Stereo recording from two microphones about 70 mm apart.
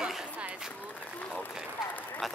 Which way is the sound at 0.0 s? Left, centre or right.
Centre.